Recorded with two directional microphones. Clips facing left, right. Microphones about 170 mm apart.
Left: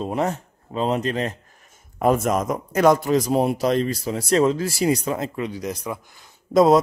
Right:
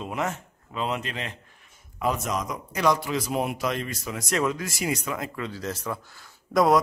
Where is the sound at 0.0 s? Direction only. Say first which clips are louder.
Left 6 dB; 35° left (ahead or behind).